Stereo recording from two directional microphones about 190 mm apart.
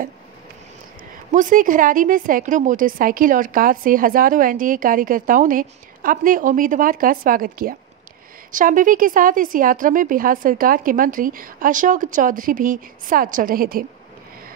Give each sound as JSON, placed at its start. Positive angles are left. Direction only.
{"t": 1.3, "sound": "a woman's voice", "side_deg": -45}